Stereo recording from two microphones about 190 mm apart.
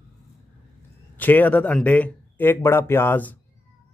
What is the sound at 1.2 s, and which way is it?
A man's voice, 10° left (ahead or behind).